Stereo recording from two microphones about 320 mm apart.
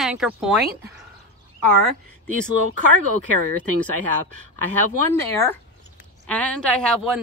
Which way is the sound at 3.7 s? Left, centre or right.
Right.